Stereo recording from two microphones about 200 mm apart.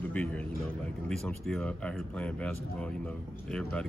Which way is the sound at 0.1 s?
5° left (ahead or behind).